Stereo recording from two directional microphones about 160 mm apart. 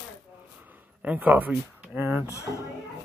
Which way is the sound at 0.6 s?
10° right (ahead or behind).